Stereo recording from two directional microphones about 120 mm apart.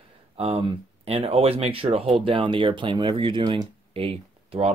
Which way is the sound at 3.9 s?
50° right (ahead or behind).